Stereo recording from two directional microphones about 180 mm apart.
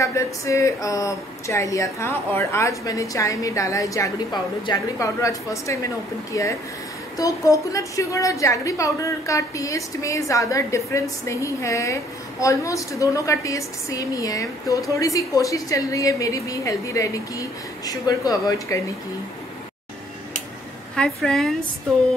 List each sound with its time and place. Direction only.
0.0 s a woman's voice: 15° left (ahead or behind)
20.9 s a woman's voice: 5° left (ahead or behind)